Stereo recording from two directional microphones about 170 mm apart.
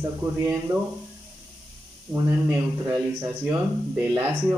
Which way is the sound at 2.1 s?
15° right (ahead or behind).